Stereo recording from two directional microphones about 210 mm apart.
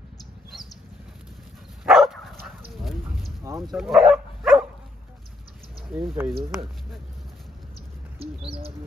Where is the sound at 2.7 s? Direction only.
Centre (ahead or behind).